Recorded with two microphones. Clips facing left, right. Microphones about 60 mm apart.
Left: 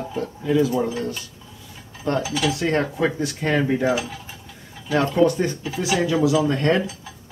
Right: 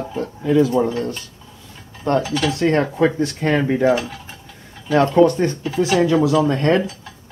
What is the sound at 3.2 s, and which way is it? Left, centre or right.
Speech, centre.